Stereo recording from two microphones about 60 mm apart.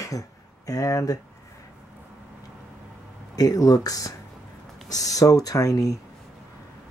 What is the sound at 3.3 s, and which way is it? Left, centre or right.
Speech, left.